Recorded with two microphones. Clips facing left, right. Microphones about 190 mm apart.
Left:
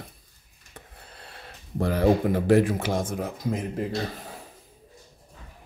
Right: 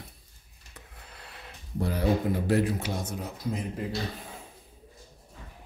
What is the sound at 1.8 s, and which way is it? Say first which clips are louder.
Speech: left 5 dB; 90° left.